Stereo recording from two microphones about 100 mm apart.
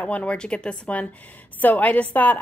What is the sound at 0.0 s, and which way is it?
Speech, 15° left (ahead or behind).